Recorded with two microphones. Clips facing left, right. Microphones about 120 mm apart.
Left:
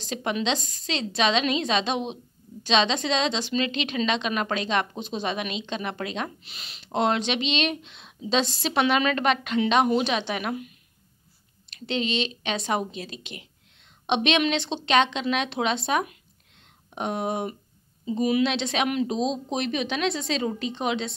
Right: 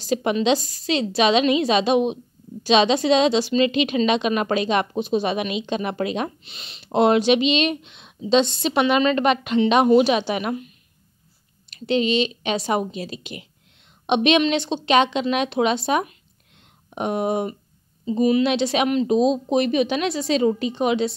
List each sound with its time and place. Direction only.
0.0 s a woman's voice: 10° right (ahead or behind)
6.4 s speech: centre (ahead or behind)
6.8 s a woman's voice: 10° right (ahead or behind)
11.7 s speech: 5° right (ahead or behind)
18.0 s speech: 5° left (ahead or behind)